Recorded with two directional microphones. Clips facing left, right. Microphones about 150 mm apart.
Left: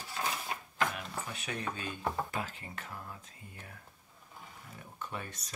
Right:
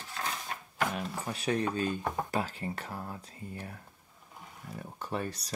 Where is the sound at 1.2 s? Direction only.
35° right (ahead or behind).